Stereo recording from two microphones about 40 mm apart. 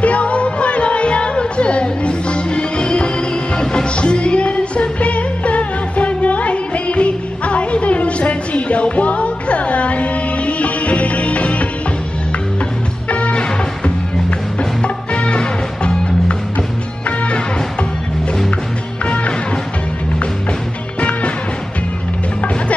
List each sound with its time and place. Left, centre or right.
0.0 s music: left
13.1 s music: left
19.0 s music: left
21.0 s music: left